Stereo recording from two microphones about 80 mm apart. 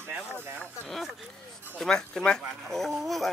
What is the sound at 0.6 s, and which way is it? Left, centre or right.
Speech, centre.